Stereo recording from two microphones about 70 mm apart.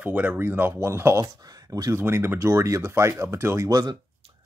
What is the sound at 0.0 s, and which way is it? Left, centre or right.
Speech, right.